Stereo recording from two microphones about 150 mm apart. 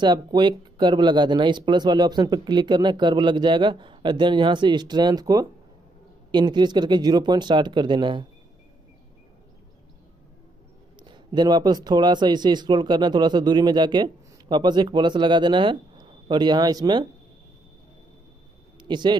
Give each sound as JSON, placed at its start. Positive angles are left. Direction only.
{"t": 0.0, "sound": "speech", "side_deg": -30}
{"t": 11.0, "sound": "speech", "side_deg": -30}
{"t": 18.8, "sound": "speech", "side_deg": -30}